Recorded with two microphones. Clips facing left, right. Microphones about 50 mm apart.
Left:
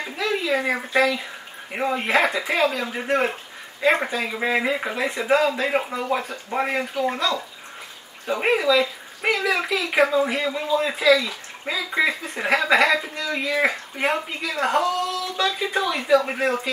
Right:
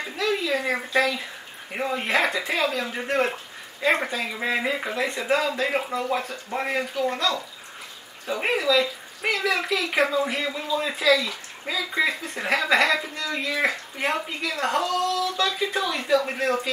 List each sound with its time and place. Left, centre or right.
0.2 s speech: centre